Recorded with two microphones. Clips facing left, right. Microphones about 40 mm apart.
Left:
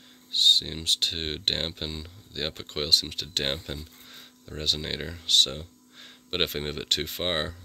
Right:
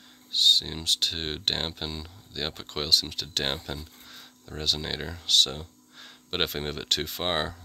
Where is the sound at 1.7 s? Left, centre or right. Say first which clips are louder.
Even; centre.